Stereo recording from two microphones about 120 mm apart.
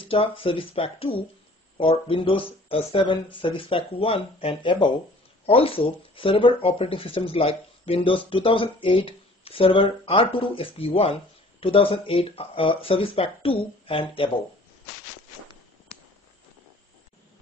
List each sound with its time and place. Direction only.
0.0 s speech: 45° left (ahead or behind)
5.5 s speech: 50° left (ahead or behind)